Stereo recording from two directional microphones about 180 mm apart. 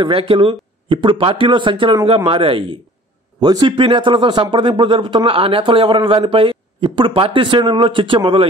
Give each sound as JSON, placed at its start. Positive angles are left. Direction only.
{"t": 0.0, "sound": "speech", "side_deg": -30}